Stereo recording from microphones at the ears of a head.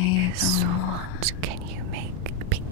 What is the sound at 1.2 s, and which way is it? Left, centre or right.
Whispering, right.